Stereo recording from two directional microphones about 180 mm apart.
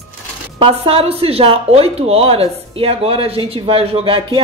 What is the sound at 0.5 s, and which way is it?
Speech, 30° right (ahead or behind).